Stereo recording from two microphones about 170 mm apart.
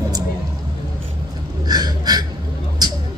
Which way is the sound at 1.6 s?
25° right (ahead or behind).